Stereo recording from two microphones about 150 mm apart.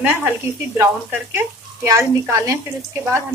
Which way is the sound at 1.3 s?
15° right (ahead or behind).